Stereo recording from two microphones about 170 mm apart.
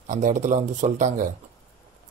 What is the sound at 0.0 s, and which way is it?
Speech, 45° right (ahead or behind).